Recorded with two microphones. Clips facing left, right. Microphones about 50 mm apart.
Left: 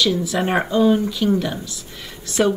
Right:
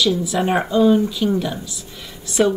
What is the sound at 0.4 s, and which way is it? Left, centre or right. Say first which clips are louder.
Speech: right 1 dB; centre.